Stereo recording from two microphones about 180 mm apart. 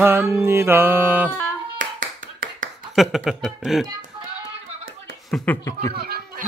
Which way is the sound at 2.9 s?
Centre (ahead or behind).